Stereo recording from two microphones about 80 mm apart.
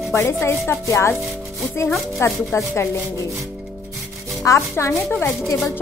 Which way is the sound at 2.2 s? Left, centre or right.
Left.